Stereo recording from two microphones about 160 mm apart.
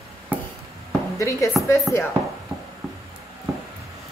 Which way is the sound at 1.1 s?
20° left (ahead or behind).